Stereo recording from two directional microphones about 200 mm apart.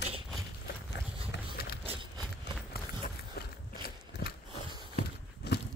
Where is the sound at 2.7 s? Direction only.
50° left (ahead or behind).